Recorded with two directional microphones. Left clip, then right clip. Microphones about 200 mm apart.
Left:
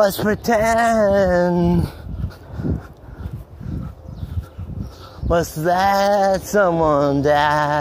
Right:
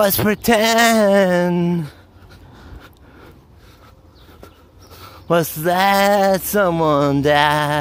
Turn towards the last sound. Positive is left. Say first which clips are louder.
# right 1 dB
turn(degrees=-55)  # may be behind; listen again after turning